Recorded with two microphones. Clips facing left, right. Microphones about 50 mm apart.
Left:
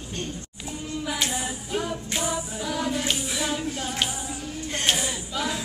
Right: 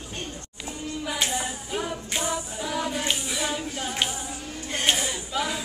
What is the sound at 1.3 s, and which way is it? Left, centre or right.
Music, centre.